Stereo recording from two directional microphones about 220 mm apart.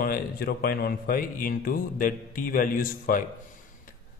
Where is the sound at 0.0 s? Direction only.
45° left (ahead or behind).